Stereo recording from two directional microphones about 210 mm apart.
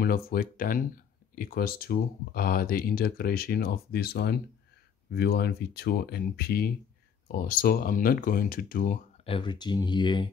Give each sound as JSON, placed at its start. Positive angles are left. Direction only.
{"t": 0.0, "sound": "speech", "side_deg": 45}
{"t": 9.2, "sound": "speech", "side_deg": 25}